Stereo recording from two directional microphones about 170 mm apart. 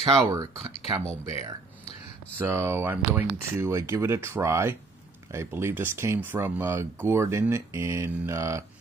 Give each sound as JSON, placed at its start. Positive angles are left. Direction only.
{"t": 0.0, "sound": "speech", "side_deg": -20}
{"t": 2.3, "sound": "speech", "side_deg": -15}